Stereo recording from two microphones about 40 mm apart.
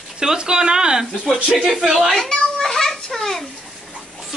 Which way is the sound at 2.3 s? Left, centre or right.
Centre.